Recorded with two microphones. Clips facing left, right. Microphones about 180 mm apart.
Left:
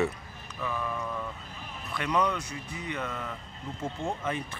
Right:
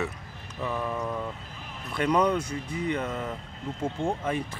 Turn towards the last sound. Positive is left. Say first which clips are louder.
# right 4 dB
turn(degrees=-10)  # may be behind; listen again after turning